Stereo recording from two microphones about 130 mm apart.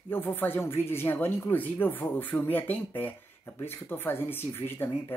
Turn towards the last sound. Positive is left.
turn(degrees=15)  # may be behind; listen again after turning